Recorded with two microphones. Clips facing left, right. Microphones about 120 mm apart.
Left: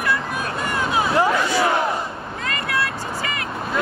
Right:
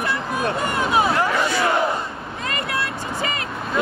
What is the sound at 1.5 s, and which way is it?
Battle cry, centre (ahead or behind).